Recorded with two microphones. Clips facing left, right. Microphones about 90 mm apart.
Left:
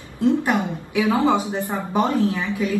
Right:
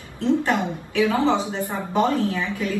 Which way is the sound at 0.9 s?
15° left (ahead or behind).